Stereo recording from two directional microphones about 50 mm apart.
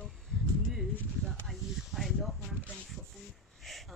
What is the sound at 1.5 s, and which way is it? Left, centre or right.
Snake, centre.